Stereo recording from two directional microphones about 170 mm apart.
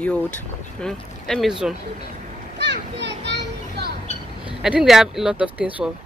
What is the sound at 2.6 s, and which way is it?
Children playing, 90° right.